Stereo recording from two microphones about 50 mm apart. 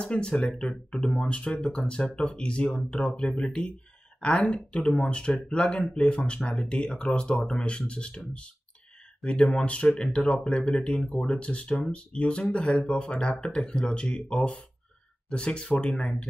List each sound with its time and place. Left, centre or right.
0.0 s speech: centre
9.2 s speech: left
15.2 s speech: centre